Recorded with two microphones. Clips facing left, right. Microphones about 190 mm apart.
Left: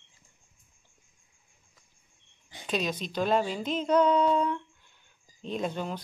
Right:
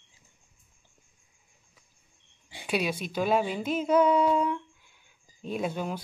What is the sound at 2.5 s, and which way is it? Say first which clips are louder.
A woman's voice: right 2 dB; 10° right (ahead or behind).